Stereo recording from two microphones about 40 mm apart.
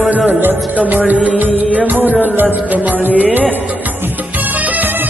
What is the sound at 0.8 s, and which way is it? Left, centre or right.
Music, right.